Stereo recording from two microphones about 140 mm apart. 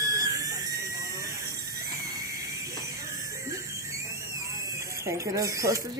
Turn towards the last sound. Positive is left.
turn(degrees=-25)  # may be behind; listen again after turning